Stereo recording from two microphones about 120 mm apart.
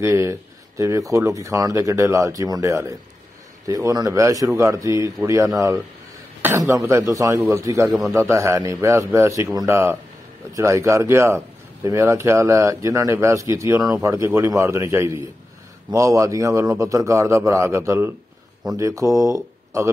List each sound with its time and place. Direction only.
0.0 s speech: 25° right (ahead or behind)